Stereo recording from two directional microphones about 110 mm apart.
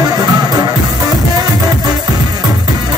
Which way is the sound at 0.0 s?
35° right (ahead or behind).